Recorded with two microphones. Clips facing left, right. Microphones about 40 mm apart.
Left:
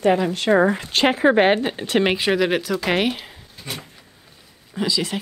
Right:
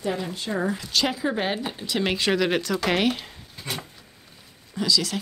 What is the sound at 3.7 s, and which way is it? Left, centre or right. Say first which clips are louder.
Speech: even; centre.